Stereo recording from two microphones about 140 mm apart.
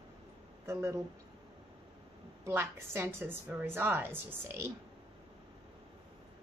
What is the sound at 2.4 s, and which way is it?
A woman's voice, 20° right (ahead or behind).